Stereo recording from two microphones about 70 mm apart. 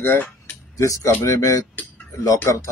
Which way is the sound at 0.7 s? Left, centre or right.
Left.